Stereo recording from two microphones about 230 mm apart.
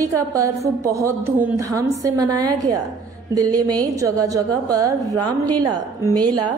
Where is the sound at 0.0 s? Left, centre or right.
Centre.